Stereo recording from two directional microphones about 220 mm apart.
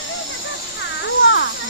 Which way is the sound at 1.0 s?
55° left (ahead or behind).